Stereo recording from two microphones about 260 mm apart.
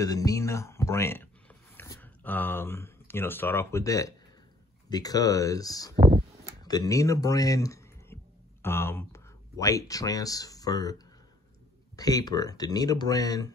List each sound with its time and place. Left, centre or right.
0.0 s speech: centre
5.9 s a sound: right
6.6 s speech: centre
12.0 s speech: centre